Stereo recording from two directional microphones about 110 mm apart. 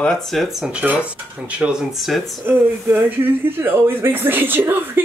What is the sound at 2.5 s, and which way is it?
Speech, 20° right (ahead or behind).